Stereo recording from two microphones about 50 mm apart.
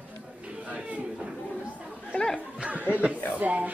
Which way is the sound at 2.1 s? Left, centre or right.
Left.